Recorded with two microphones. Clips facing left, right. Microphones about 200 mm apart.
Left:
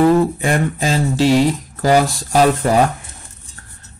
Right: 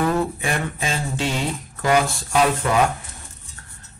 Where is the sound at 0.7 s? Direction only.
35° left (ahead or behind).